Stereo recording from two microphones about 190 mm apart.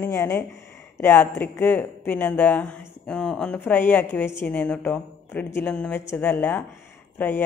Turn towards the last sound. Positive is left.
turn(degrees=10)  # may be behind; listen again after turning